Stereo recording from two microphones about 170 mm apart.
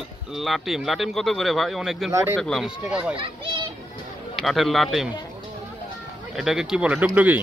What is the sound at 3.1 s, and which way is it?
Speech, 30° right (ahead or behind).